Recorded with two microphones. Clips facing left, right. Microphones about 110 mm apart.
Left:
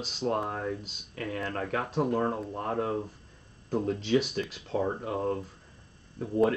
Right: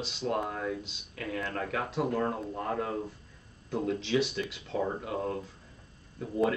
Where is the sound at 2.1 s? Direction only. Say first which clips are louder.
Left 2 dB; 30° left (ahead or behind).